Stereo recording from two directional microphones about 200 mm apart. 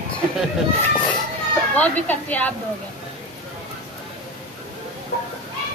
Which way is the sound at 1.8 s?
10° left (ahead or behind).